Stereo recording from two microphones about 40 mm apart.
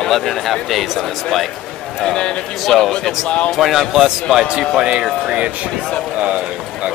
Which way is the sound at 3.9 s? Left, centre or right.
Centre.